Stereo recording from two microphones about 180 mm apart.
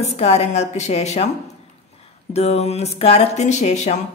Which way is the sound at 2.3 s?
35° left (ahead or behind).